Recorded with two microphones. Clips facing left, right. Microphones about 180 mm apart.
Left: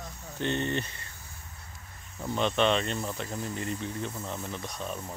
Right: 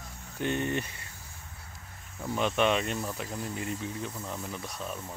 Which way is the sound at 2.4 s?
10° right (ahead or behind).